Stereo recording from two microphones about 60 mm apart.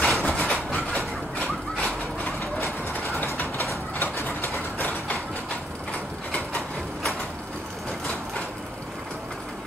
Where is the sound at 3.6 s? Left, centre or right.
Left.